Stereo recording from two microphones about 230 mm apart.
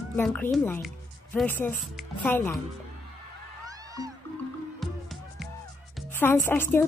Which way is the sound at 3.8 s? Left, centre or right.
Centre.